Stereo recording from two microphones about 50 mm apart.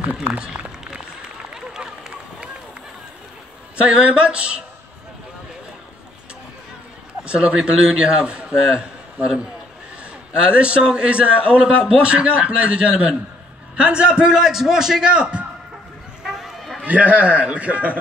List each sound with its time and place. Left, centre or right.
0.4 s a sound: centre
1.8 s run: centre
3.7 s a man's voice: centre
7.2 s a man's voice: right
10.4 s a man's voice: right
14.4 s a man's voice: centre
16.2 s run: centre
16.8 s a man's voice: right